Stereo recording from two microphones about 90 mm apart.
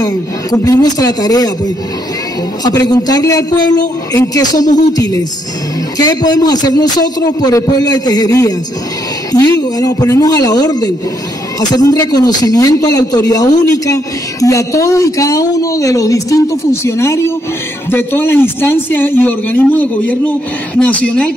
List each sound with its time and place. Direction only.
0.0 s a man's voice: 45° left (ahead or behind)
2.6 s a man's voice: 45° left (ahead or behind); by 21.3 s 10° left (ahead or behind)